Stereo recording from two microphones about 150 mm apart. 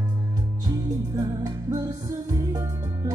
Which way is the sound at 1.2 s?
25° right (ahead or behind).